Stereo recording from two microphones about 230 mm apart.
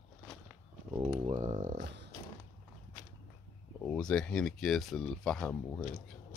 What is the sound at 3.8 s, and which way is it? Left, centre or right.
Speech, centre.